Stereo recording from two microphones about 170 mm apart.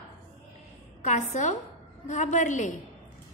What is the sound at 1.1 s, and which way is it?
A woman's voice, 45° left (ahead or behind).